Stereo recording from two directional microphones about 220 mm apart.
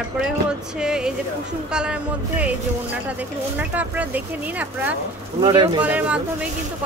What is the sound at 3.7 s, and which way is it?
Speech, 5° right (ahead or behind).